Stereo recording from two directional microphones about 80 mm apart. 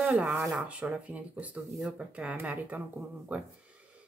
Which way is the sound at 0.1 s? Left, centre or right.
Centre.